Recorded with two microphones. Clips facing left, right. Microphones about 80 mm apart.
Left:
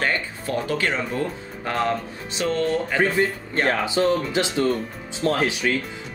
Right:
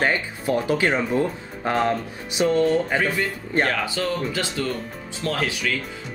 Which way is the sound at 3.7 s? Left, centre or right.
Left.